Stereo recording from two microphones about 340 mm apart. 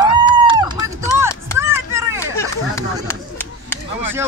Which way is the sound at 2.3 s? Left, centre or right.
Centre.